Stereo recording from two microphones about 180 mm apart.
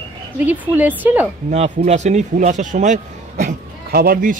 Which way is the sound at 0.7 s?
10° right (ahead or behind).